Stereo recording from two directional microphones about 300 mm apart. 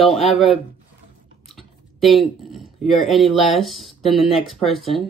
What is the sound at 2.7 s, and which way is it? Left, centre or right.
Speech, centre.